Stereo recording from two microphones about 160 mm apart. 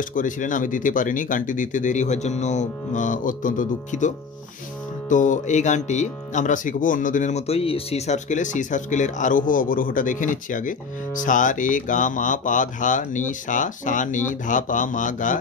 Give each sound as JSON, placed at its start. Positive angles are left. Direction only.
{"t": 0.1, "sound": "speech", "side_deg": 55}
{"t": 5.1, "sound": "speech", "side_deg": 50}